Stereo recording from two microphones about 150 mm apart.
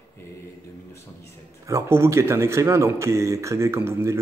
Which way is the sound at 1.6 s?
20° right (ahead or behind).